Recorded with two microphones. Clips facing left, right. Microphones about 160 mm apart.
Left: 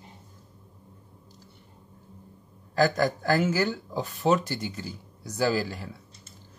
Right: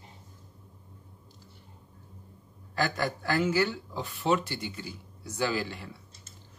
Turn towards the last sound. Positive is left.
turn(degrees=40)  # may be behind; listen again after turning